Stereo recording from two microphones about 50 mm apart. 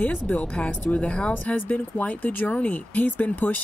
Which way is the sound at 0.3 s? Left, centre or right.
Left.